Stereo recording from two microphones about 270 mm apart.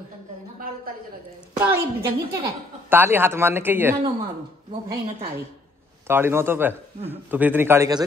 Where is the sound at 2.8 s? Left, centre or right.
Centre.